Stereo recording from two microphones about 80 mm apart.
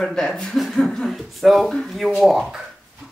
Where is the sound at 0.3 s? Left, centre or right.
Centre.